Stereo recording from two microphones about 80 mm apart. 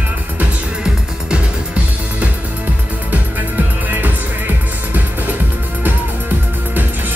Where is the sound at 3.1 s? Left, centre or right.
Right.